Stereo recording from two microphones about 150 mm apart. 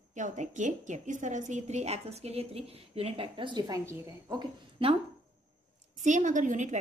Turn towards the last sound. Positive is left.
turn(degrees=-55)  # may be behind; listen again after turning